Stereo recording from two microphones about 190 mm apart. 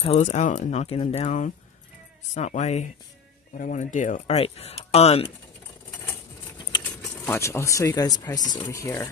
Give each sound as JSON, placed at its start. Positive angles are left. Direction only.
{"t": 0.0, "sound": "speech", "side_deg": 35}
{"t": 6.8, "sound": "speech", "side_deg": 10}